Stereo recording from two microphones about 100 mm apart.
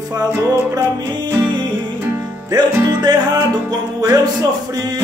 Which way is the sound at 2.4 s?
40° right (ahead or behind).